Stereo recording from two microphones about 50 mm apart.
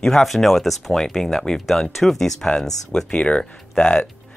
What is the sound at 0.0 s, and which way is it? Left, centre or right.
Speech, centre.